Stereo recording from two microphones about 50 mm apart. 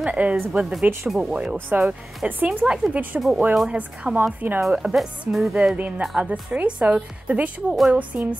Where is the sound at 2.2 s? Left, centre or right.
Right.